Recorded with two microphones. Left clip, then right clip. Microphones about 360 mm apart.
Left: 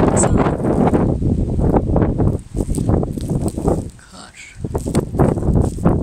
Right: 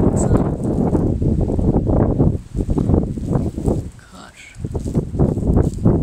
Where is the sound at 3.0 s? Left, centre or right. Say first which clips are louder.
Left 1 dB; left.